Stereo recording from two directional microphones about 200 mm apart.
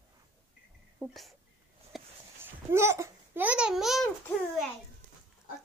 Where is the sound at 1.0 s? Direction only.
Centre (ahead or behind).